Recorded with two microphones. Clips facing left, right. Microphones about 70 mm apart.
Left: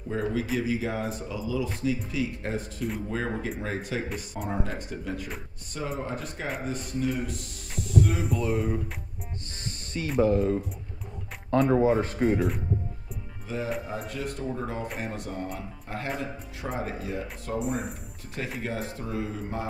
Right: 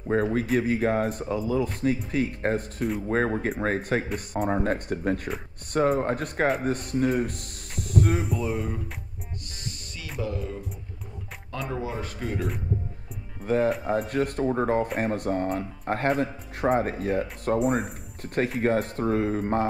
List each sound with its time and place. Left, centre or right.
0.1 s speech: right
8.3 s speech: centre
10.1 s speech: left
13.5 s speech: right